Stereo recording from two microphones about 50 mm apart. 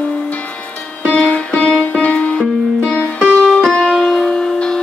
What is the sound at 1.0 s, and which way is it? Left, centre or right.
Music, left.